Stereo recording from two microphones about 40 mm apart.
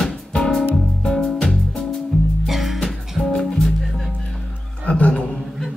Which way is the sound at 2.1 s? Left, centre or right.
Centre.